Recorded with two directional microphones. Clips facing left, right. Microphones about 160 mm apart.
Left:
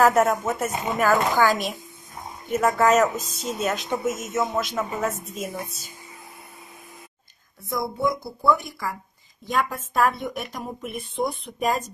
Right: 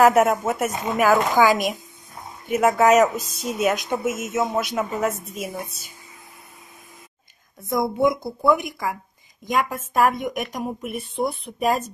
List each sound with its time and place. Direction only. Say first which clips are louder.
0.0 s speech: right 3 dB; 10° right (ahead or behind)
7.7 s speech: right 5 dB; 20° right (ahead or behind); by 11.8 s 5° right (ahead or behind)